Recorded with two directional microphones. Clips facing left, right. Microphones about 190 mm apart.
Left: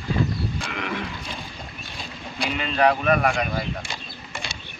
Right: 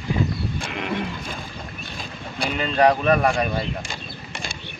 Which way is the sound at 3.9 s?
50° right (ahead or behind).